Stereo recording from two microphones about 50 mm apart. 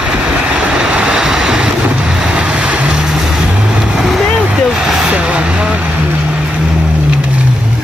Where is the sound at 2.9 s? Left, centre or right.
Centre.